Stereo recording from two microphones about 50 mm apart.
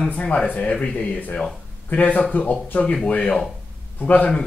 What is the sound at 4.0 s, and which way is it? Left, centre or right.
Speech, left.